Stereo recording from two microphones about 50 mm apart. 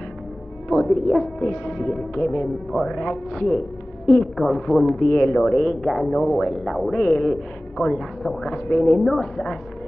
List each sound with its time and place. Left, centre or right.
0.7 s a woman's voice: centre
3.3 s a woman's voice: centre
6.0 s a woman's voice: centre
6.3 s speech: centre
6.9 s a woman's voice: centre